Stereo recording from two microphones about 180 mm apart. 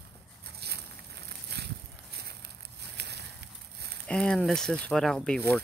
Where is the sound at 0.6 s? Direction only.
65° right (ahead or behind).